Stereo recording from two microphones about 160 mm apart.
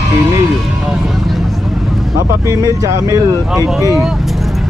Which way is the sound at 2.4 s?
20° right (ahead or behind).